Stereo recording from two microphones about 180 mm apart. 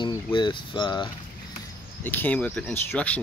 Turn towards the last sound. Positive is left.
turn(degrees=10)  # may be behind; listen again after turning